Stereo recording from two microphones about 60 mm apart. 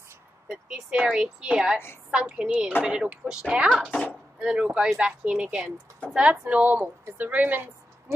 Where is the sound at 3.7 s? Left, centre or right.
Centre.